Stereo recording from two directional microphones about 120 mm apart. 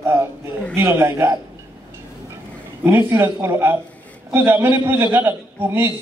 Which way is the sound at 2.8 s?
20° right (ahead or behind).